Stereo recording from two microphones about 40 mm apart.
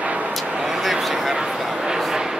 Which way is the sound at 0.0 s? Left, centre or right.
Right.